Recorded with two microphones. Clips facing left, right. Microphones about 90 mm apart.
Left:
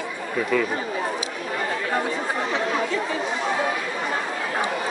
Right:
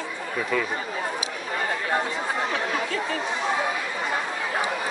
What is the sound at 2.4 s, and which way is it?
Chatter, 15° left (ahead or behind).